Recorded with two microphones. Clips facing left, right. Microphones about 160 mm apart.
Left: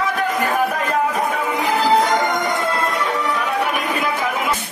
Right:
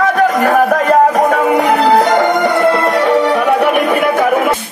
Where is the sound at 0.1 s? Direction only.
65° right (ahead or behind).